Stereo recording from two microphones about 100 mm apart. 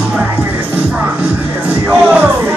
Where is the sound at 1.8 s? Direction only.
20° right (ahead or behind).